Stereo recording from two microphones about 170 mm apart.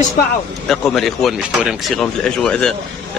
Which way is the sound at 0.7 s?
Centre (ahead or behind).